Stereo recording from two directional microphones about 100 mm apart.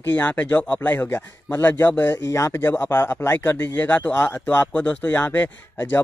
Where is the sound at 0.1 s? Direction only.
20° left (ahead or behind).